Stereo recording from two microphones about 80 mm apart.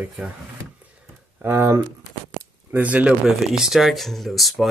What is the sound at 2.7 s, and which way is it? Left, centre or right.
Speech, centre.